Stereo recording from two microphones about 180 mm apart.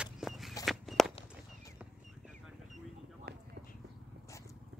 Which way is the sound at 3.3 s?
60° right (ahead or behind).